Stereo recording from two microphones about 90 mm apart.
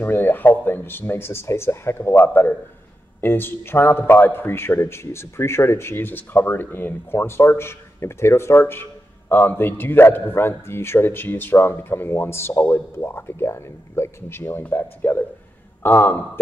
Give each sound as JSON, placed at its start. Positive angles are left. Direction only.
{"t": 0.0, "sound": "a man's voice", "side_deg": 20}